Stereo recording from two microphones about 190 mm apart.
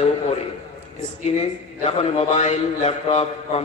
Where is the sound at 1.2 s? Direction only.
35° left (ahead or behind).